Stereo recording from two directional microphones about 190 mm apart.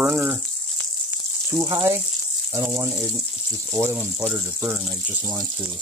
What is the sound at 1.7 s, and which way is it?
Speech, 15° right (ahead or behind).